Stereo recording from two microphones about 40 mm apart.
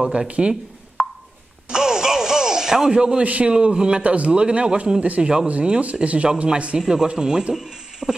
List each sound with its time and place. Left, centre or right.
0.0 s speech: right
1.7 s music: centre
2.9 s speech: right
5.0 s speech: right
6.9 s speech: centre